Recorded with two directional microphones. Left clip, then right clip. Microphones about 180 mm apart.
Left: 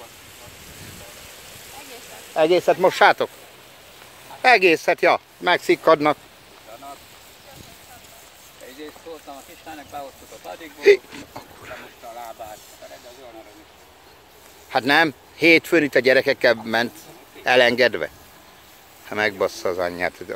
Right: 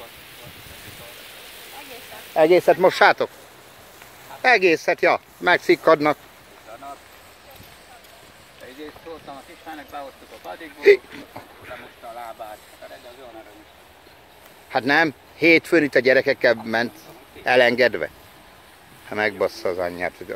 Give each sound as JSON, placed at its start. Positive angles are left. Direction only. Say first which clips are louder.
{"t": 2.3, "sound": "speech", "louder": "right 2 dB", "side_deg": -10}
{"t": 4.4, "sound": "speech", "louder": "left 2 dB", "side_deg": 5}
{"t": 5.4, "sound": "speech", "louder": "right 4 dB", "side_deg": -10}
{"t": 9.7, "sound": "speech", "louder": "even", "side_deg": 30}
{"t": 10.8, "sound": "speech", "louder": "even", "side_deg": 5}
{"t": 14.7, "sound": "speech", "louder": "left 1 dB", "side_deg": 5}